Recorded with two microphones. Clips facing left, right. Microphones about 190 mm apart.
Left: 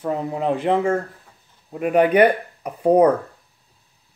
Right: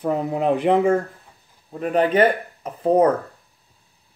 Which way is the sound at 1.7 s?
10° left (ahead or behind).